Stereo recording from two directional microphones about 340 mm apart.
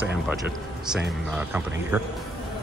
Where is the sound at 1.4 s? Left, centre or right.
Centre.